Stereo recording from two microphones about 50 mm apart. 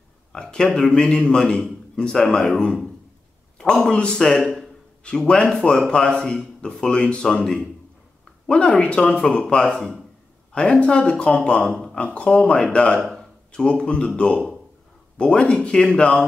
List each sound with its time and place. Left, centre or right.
0.3 s a man's voice: centre
9.7 s speech: centre; by 12.4 s left
12.4 s a man's voice: centre